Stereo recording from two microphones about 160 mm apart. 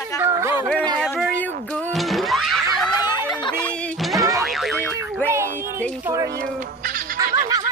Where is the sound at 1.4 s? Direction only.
10° left (ahead or behind).